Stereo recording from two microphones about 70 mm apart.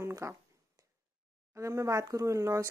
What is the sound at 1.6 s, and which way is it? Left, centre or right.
Speech, right.